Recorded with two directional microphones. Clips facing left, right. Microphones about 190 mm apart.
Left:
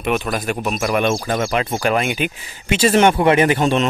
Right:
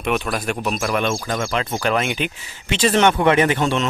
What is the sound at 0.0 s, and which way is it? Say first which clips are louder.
Speech: left 2 dB; centre (ahead or behind).